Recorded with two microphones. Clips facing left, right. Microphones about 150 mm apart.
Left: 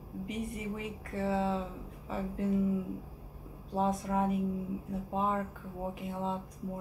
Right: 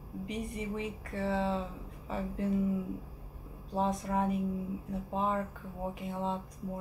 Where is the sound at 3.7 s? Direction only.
Centre (ahead or behind).